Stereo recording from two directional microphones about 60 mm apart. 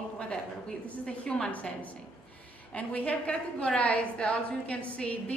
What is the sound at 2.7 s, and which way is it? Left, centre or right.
A woman's voice, left.